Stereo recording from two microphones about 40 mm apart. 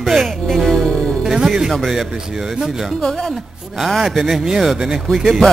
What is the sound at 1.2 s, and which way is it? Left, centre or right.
Speech, centre.